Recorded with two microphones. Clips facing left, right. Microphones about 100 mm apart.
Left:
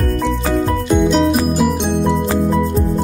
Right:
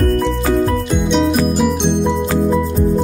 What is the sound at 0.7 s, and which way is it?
Music, centre (ahead or behind).